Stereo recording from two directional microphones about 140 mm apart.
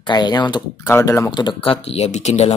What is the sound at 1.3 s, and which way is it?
Speech, 35° left (ahead or behind).